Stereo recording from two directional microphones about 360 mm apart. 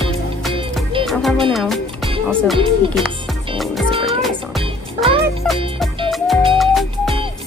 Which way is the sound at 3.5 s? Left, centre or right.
Centre.